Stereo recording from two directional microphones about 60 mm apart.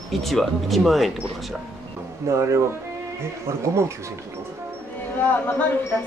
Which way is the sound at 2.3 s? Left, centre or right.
Right.